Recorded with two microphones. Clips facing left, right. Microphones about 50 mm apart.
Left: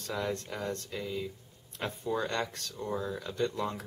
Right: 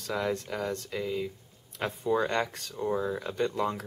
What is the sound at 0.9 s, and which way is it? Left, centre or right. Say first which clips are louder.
Speech: right 4 dB; right.